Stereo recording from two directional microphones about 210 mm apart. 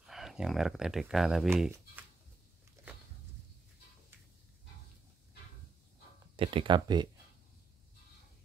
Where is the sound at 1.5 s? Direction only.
10° right (ahead or behind).